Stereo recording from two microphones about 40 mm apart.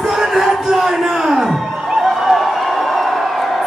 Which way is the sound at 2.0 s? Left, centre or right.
Centre.